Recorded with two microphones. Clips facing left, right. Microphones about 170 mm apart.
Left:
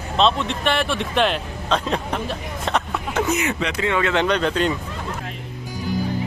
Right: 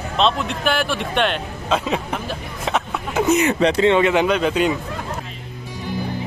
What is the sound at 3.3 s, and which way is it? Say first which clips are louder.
Speech: right 7 dB; 30° right (ahead or behind).